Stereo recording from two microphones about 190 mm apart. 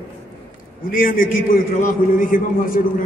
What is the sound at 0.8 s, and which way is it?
A man's voice, 45° left (ahead or behind).